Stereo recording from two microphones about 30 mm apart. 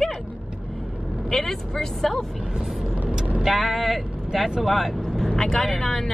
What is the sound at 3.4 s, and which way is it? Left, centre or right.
Speech, centre.